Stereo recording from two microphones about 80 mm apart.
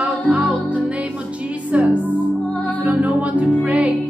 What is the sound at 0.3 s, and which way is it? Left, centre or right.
Music, centre.